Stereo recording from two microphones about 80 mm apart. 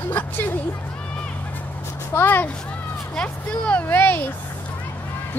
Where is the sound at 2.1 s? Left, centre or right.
Left.